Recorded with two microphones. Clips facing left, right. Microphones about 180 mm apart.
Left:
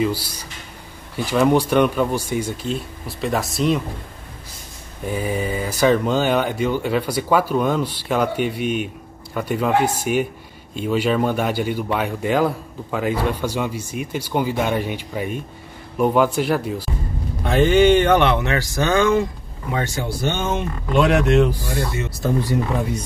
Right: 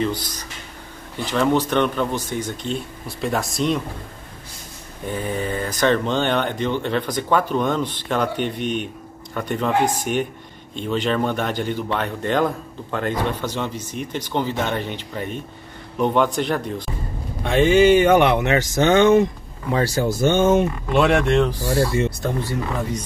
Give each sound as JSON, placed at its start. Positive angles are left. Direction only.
{"t": 0.0, "sound": "a man's voice", "side_deg": 10}
{"t": 5.0, "sound": "a man's voice", "side_deg": 10}
{"t": 19.7, "sound": "speech", "side_deg": -35}
{"t": 20.9, "sound": "speech", "side_deg": 0}
{"t": 21.7, "sound": "speech", "side_deg": -30}
{"t": 22.4, "sound": "a man's voice", "side_deg": 15}